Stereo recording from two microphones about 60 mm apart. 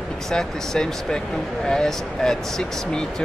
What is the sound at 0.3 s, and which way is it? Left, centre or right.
Speech, centre.